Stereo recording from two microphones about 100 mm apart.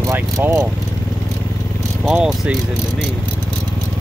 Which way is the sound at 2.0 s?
5° right (ahead or behind).